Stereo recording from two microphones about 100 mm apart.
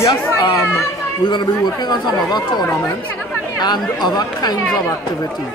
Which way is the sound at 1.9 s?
45° left (ahead or behind).